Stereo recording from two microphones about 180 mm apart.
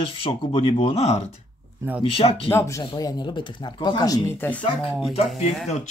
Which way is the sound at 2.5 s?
15° left (ahead or behind).